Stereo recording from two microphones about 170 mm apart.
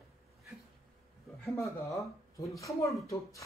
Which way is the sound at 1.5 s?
20° left (ahead or behind).